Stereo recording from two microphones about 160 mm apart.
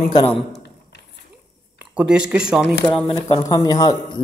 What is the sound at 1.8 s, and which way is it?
Speech, 5° right (ahead or behind).